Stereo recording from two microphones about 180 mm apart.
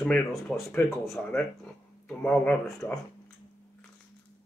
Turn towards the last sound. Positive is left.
turn(degrees=10)  # may be behind; listen again after turning